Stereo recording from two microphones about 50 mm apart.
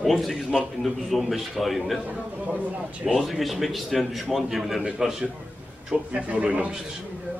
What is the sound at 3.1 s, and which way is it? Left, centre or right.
A man's voice, centre.